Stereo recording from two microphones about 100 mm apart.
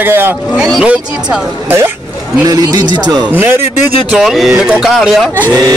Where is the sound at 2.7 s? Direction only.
45° right (ahead or behind).